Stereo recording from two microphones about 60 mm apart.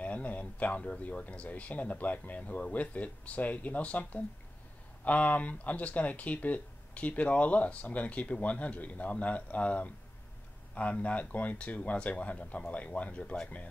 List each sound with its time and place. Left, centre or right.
0.0 s speech: left